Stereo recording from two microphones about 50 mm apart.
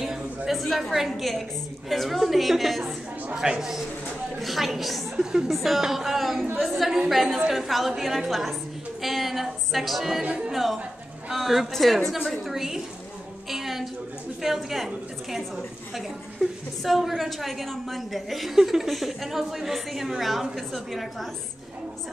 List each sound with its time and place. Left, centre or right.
0.5 s a woman's voice: centre
3.3 s a woman's voice: centre
4.4 s a woman's voice: centre
10.2 s speech: right
10.5 s a woman's voice: centre
13.5 s a sound: centre
14.4 s a woman's voice: centre
16.3 s a woman's voice: centre